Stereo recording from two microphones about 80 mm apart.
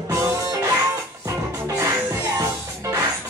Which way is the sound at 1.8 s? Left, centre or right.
Right.